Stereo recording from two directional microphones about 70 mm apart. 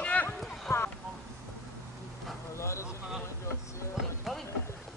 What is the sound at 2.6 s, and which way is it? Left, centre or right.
Vehicle, left.